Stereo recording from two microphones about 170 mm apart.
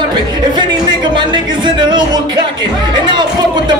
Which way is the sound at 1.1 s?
25° right (ahead or behind).